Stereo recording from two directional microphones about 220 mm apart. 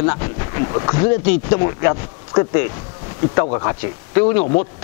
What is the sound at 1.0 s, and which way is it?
Speech, 10° left (ahead or behind).